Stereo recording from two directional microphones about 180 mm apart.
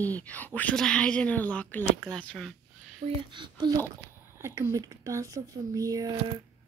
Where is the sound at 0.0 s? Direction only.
10° left (ahead or behind).